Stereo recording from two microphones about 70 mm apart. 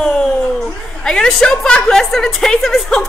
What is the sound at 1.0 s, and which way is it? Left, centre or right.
A woman's voice, centre.